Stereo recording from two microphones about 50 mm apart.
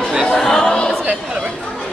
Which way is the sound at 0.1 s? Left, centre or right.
Centre.